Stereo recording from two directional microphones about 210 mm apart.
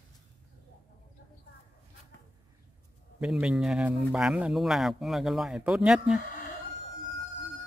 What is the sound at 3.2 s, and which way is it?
A man's voice, 5° right (ahead or behind).